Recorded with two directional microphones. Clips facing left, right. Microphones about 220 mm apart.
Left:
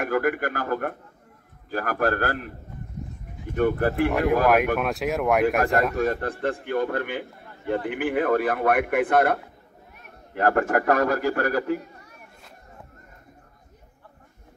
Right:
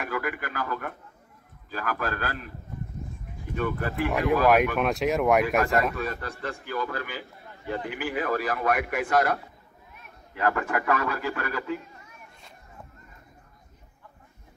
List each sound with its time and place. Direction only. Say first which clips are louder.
0.0 s a man's voice: left 8 dB; 50° left (ahead or behind)
3.5 s a man's voice: left 7 dB; 50° left (ahead or behind)
4.3 s speech: right 2 dB; centre (ahead or behind)
5.9 s a man's voice: left 8 dB; 50° left (ahead or behind)